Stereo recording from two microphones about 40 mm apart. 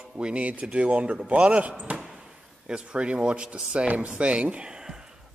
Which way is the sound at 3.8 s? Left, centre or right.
Right.